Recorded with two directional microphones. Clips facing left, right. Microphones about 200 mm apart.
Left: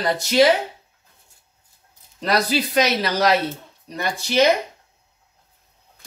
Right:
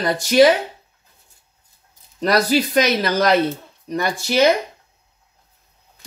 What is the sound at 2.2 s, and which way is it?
Speech, 50° right (ahead or behind).